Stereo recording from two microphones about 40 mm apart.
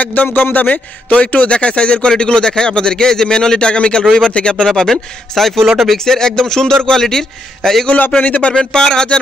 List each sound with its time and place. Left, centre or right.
0.0 s a man's voice: left
0.7 s a man's voice: left; by 7.9 s centre
8.1 s speech: left
8.5 s a man's voice: centre